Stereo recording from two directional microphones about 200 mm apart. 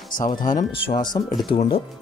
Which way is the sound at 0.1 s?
40° left (ahead or behind).